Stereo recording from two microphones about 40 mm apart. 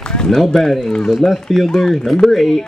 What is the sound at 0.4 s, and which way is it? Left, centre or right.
Speech, centre.